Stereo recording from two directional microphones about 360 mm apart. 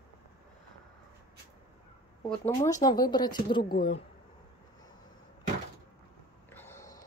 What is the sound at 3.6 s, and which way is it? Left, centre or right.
Speech, left.